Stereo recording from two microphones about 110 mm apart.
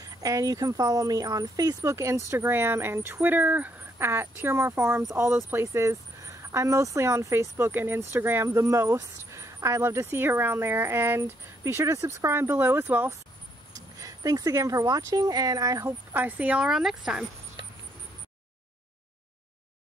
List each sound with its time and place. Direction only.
0.2 s speech: 30° right (ahead or behind); by 13.1 s 15° right (ahead or behind)
13.7 s speech: 30° right (ahead or behind)
16.1 s a woman's voice: 15° right (ahead or behind)